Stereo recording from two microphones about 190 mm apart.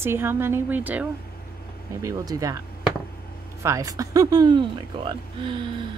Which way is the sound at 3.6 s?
15° right (ahead or behind).